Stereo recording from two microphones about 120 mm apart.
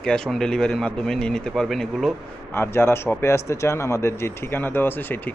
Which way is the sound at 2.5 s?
20° left (ahead or behind).